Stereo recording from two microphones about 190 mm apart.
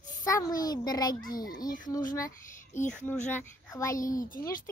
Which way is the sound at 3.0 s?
10° left (ahead or behind).